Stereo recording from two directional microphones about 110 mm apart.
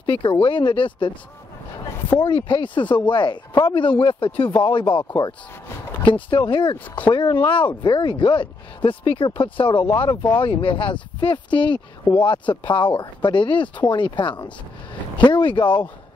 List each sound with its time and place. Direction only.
0.0 s speech: 45° left (ahead or behind)
2.2 s speech: 50° left (ahead or behind)
6.3 s speech: 45° left (ahead or behind)